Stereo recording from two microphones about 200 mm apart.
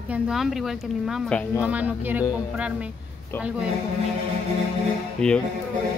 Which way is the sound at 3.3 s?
10° left (ahead or behind).